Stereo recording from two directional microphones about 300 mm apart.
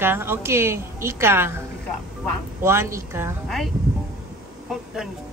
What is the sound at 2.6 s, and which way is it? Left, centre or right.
A woman's voice, centre.